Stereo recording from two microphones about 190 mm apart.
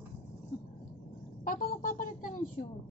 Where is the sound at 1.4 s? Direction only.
45° left (ahead or behind).